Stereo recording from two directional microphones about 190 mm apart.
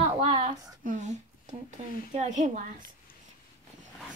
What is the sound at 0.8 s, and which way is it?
A woman's voice, 40° right (ahead or behind).